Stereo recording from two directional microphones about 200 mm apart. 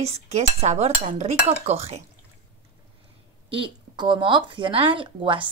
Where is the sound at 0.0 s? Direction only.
30° right (ahead or behind).